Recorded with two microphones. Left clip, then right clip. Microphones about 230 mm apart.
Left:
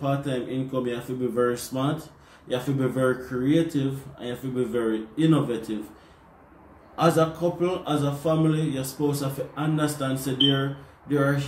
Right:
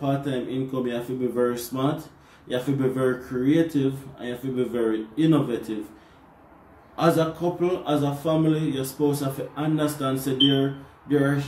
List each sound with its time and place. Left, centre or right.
0.0 s speech: centre
7.0 s speech: centre